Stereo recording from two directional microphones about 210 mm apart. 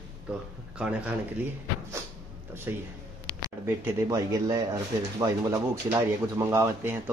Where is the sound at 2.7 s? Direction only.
10° right (ahead or behind).